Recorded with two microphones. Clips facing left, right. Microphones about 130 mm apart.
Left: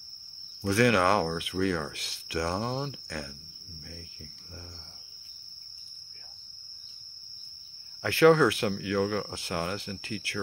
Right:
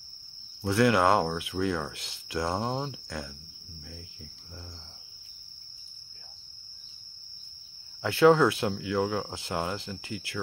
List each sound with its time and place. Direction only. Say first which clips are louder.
0.6 s speech: even; 20° right (ahead or behind)
8.0 s speech: even; 20° right (ahead or behind)